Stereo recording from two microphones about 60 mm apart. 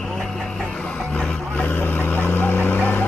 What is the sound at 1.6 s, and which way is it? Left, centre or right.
Vehicle, left.